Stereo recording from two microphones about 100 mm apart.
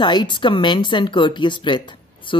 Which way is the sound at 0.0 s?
50° left (ahead or behind).